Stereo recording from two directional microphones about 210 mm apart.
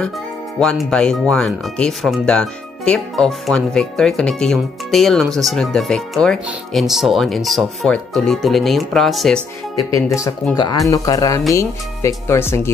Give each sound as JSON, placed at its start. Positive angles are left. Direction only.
{"t": 0.6, "sound": "speech", "side_deg": 0}
{"t": 9.9, "sound": "speech", "side_deg": 15}